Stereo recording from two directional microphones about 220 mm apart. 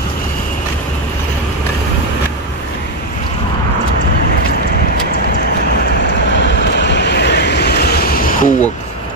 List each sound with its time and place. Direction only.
6.3 s vehicle: 55° left (ahead or behind)